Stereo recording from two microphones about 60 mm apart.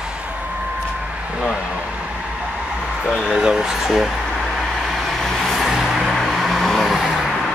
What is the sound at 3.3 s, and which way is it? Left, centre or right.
Speech, centre.